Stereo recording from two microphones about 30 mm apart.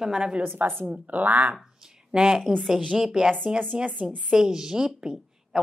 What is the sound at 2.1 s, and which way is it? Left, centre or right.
A woman's voice, right.